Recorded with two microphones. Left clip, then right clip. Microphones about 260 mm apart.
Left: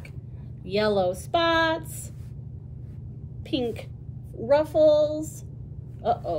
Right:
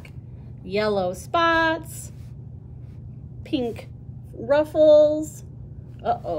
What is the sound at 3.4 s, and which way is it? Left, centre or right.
A woman's voice, centre.